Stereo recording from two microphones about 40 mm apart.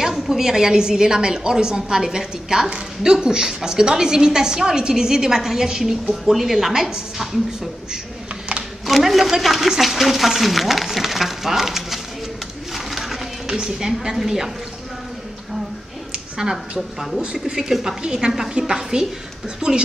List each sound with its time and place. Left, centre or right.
0.0 s a woman's voice: centre
8.8 s speech: centre
12.7 s a sound: centre
13.6 s a woman's voice: centre
16.3 s a woman's voice: centre
17.2 s a woman's voice: right
17.6 s a woman's voice: centre